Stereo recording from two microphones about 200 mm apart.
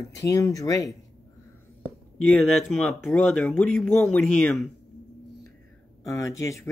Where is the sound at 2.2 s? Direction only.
5° left (ahead or behind).